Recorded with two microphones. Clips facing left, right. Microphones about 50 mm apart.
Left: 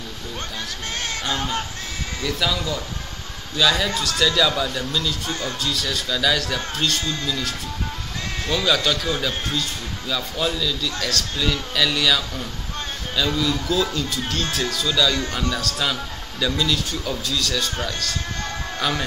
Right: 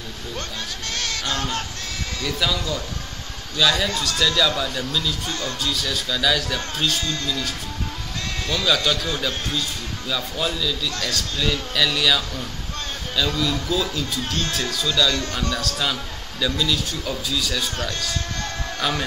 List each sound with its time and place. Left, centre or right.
0.9 s speech: left
2.2 s a man's voice: centre
8.6 s a man's voice: centre
13.4 s a man's voice: centre
18.8 s speech: centre